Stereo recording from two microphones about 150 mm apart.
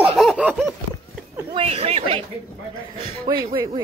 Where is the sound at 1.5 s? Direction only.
40° right (ahead or behind).